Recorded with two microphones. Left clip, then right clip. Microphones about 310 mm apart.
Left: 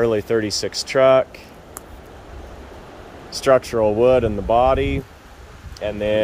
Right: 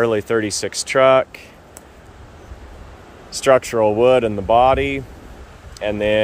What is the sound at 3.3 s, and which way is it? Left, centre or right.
Speech, centre.